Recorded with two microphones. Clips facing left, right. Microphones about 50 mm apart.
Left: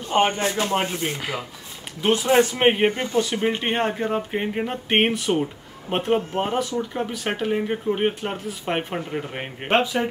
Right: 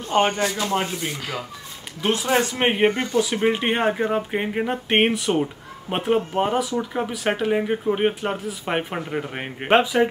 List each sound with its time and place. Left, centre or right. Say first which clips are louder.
0.1 s speech: even; left
2.5 s speech: left 1 dB; centre